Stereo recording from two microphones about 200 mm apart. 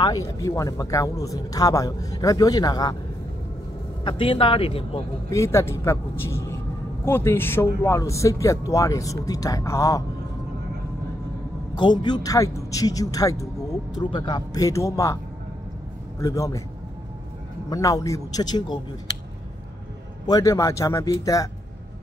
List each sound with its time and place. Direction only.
0.0 s speech: 20° left (ahead or behind)
4.0 s speech: 25° left (ahead or behind)
5.3 s speech: 15° left (ahead or behind)
11.7 s speech: 20° left (ahead or behind)
16.2 s speech: 15° left (ahead or behind)
17.6 s speech: 15° left (ahead or behind)
20.2 s speech: 15° left (ahead or behind)